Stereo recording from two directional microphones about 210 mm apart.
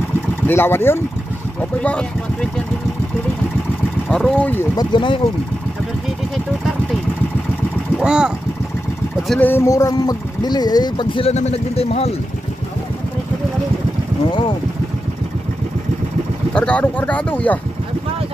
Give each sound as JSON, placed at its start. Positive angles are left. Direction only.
{"t": 0.5, "sound": "speech", "side_deg": 10}
{"t": 4.1, "sound": "speech", "side_deg": 5}
{"t": 4.9, "sound": "speech", "side_deg": 20}
{"t": 8.0, "sound": "speech", "side_deg": -5}
{"t": 9.3, "sound": "speech", "side_deg": 10}
{"t": 16.5, "sound": "speech", "side_deg": 5}